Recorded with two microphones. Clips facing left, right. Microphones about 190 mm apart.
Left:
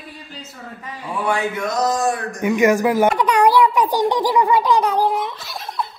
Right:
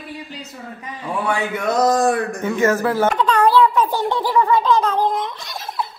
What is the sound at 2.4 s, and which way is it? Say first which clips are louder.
A child's voice: left 7 dB; 15° left (ahead or behind).